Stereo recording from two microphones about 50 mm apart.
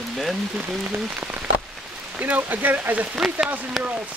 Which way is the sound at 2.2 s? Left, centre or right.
Right.